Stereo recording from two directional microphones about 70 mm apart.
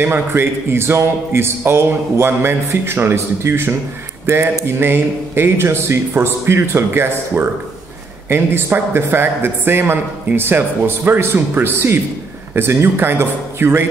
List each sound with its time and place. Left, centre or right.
0.0 s a man's voice: right